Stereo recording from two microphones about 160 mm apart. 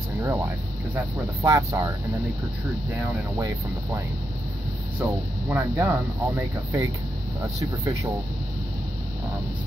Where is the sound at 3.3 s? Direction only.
20° right (ahead or behind).